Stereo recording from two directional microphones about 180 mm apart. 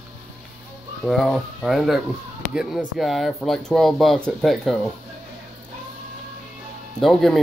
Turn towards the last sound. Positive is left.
turn(degrees=0)  # may be behind; listen again after turning